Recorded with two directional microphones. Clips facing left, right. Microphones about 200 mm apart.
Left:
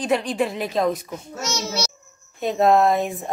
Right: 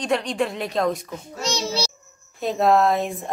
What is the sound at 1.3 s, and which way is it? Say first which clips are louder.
Speech: right 2 dB; 30° right (ahead or behind).